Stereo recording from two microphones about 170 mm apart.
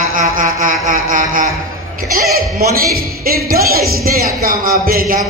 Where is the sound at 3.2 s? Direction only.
60° right (ahead or behind).